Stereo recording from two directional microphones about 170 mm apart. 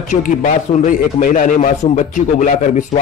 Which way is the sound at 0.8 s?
50° left (ahead or behind).